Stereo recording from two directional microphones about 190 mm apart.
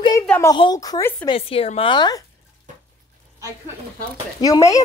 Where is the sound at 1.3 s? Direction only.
30° left (ahead or behind).